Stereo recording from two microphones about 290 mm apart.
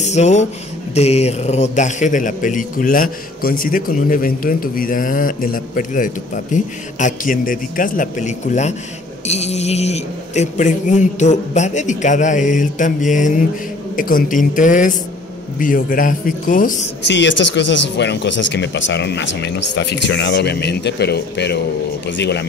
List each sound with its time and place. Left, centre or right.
0.0 s a man's voice: left